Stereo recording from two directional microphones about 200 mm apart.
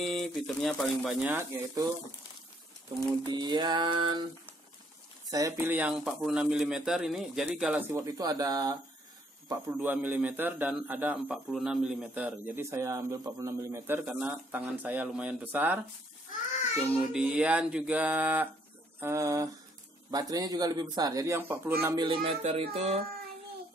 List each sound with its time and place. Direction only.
0.0 s speech: centre (ahead or behind)
3.3 s a sound: 20° right (ahead or behind)
5.3 s a man's voice: 10° right (ahead or behind)
17.1 s a man's voice: 5° right (ahead or behind)
22.0 s a sound: 25° right (ahead or behind)
22.4 s speech: 30° right (ahead or behind)